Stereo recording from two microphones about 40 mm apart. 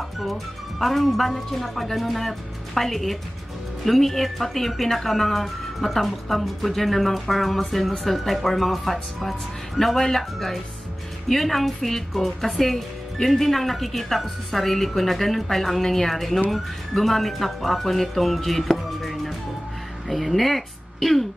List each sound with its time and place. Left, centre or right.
0.2 s speech: centre